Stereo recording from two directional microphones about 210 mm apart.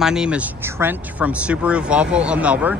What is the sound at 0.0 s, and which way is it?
Speech, 5° right (ahead or behind).